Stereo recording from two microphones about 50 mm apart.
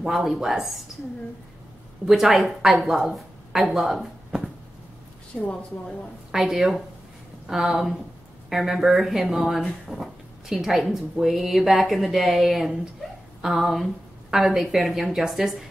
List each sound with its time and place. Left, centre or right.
0.0 s speech: centre
2.0 s a woman's voice: centre
5.3 s a woman's voice: centre
6.3 s a woman's voice: centre